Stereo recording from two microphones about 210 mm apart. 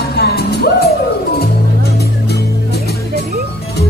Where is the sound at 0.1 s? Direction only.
50° left (ahead or behind).